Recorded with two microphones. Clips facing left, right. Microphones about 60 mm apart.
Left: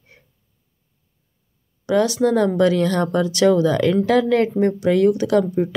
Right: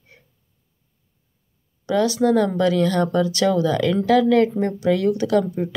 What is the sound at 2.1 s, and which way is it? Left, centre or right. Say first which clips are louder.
Speech: left 1 dB; left.